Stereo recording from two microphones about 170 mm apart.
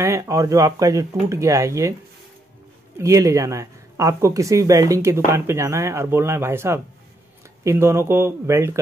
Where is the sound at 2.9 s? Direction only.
15° right (ahead or behind).